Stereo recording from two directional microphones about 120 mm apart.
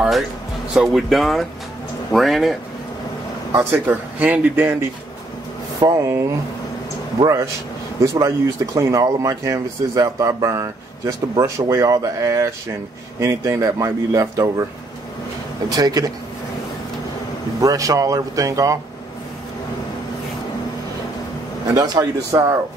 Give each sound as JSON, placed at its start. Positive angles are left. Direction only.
{"t": 0.7, "sound": "speech", "side_deg": 0}
{"t": 3.5, "sound": "speech", "side_deg": -15}
{"t": 5.8, "sound": "speech", "side_deg": -30}
{"t": 8.0, "sound": "speech", "side_deg": -25}
{"t": 15.7, "sound": "speech", "side_deg": -30}
{"t": 17.6, "sound": "speech", "side_deg": -30}
{"t": 21.7, "sound": "speech", "side_deg": -30}